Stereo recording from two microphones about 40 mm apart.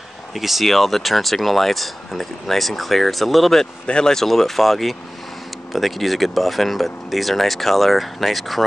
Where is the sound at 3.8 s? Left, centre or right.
Centre.